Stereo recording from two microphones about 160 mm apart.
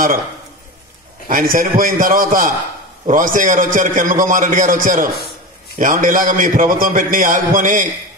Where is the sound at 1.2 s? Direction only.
60° right (ahead or behind).